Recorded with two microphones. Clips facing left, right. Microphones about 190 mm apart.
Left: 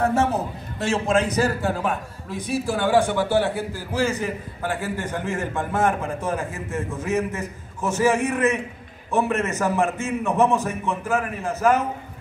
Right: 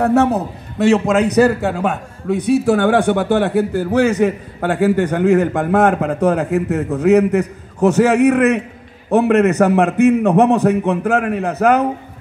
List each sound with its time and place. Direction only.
0.0 s a man's voice: 65° right (ahead or behind)